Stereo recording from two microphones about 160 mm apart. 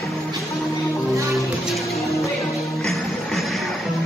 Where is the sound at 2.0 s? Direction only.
20° left (ahead or behind).